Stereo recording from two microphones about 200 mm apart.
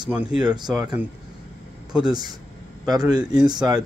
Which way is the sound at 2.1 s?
20° right (ahead or behind).